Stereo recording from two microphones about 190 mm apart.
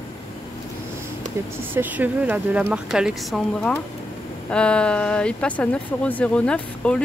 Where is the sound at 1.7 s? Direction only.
10° right (ahead or behind).